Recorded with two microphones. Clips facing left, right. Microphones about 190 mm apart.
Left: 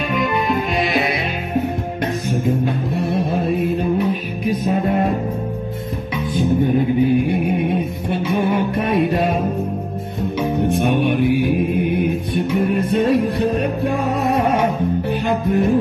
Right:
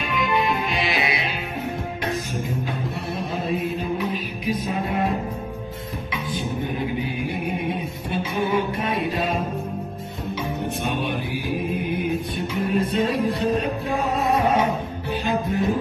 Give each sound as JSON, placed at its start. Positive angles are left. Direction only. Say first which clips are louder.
{"t": 0.1, "sound": "music", "louder": "left 2 dB", "side_deg": 40}
{"t": 3.4, "sound": "music", "louder": "left 6 dB", "side_deg": 55}
{"t": 7.2, "sound": "music", "louder": "left 7 dB", "side_deg": 60}
{"t": 10.6, "sound": "music", "louder": "left 10 dB", "side_deg": 60}
{"t": 15.0, "sound": "music", "louder": "left 5 dB", "side_deg": 60}